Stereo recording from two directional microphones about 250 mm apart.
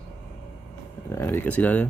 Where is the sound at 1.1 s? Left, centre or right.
Centre.